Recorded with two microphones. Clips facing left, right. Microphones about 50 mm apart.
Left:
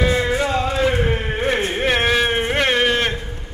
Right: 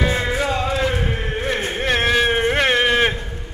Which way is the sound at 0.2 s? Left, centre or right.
Centre.